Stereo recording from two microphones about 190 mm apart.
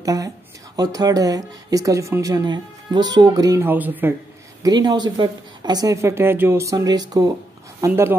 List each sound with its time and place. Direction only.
0.0 s a sound: 20° right (ahead or behind)
0.7 s speech: 20° right (ahead or behind)
4.6 s speech: 20° right (ahead or behind)